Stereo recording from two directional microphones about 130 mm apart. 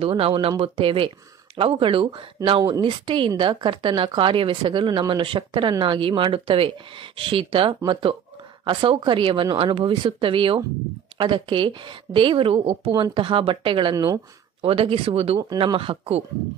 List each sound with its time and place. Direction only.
0.0 s speech: 45° right (ahead or behind)
13.9 s speech: 25° right (ahead or behind)
14.6 s speech: 45° right (ahead or behind)
15.5 s speech: 40° right (ahead or behind)